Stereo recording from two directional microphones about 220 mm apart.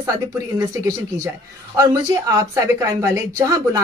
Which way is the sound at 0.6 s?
15° right (ahead or behind).